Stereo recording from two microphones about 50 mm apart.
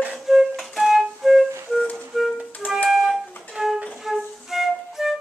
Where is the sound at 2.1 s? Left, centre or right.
Centre.